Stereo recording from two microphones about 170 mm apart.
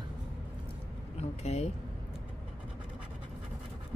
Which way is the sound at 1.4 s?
40° left (ahead or behind).